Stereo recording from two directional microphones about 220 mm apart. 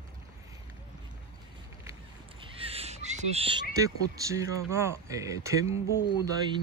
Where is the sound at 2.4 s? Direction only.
25° right (ahead or behind).